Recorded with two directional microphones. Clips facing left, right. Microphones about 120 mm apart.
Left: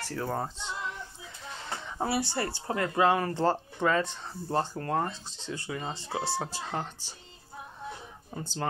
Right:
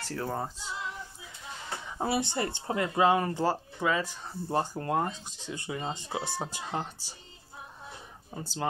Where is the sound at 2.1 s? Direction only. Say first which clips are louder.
Right 1 dB; 20° right (ahead or behind).